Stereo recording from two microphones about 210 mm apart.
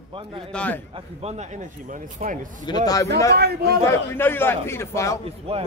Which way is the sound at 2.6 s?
20° left (ahead or behind).